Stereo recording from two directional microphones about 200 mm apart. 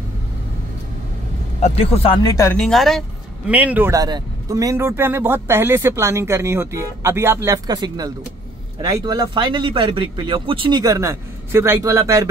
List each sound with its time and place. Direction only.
1.6 s speech: 30° left (ahead or behind)
2.2 s speech: 15° left (ahead or behind)
2.6 s speech: centre (ahead or behind); by 12.3 s 15° right (ahead or behind)